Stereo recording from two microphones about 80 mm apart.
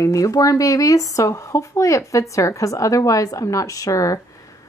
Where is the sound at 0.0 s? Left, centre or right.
Left.